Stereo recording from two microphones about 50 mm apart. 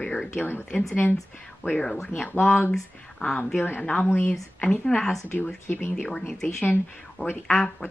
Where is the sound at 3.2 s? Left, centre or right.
Left.